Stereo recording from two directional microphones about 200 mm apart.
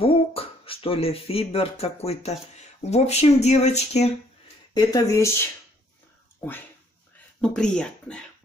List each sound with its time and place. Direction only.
0.0 s speech: 30° left (ahead or behind)
4.7 s speech: 15° left (ahead or behind)
7.4 s speech: 5° left (ahead or behind)